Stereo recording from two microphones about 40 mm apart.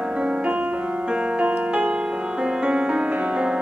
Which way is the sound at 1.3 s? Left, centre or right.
Right.